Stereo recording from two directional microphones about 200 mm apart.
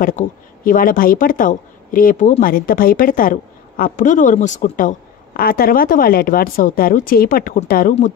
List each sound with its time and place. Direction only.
0.0 s a woman's voice: 40° left (ahead or behind)